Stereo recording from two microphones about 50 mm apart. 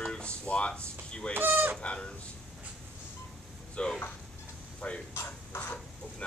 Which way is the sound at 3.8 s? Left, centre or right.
Left.